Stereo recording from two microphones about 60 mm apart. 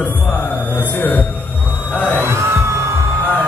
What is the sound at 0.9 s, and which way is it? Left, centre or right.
Speech, left.